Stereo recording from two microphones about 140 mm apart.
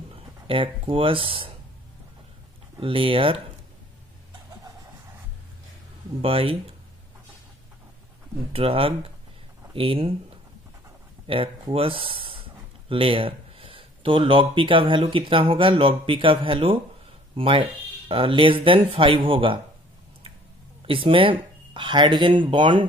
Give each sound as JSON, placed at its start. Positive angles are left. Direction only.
{"t": 0.1, "sound": "speech", "side_deg": -40}
{"t": 2.8, "sound": "speech", "side_deg": -40}
{"t": 6.2, "sound": "speech", "side_deg": -40}
{"t": 8.5, "sound": "speech", "side_deg": -45}
{"t": 11.2, "sound": "speech", "side_deg": -40}
{"t": 20.8, "sound": "speech", "side_deg": -40}